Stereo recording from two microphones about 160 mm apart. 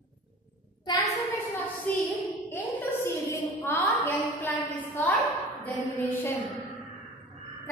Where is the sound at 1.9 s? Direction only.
10° left (ahead or behind).